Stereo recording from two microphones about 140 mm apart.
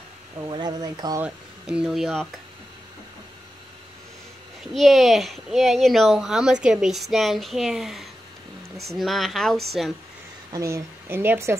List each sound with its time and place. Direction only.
0.4 s speech: 30° right (ahead or behind)
1.2 s speech: 5° right (ahead or behind)
4.7 s speech: centre (ahead or behind)
10.5 s speech: 20° right (ahead or behind)